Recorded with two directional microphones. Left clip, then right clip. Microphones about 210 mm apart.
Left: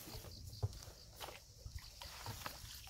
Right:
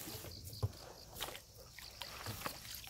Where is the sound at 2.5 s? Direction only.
20° right (ahead or behind).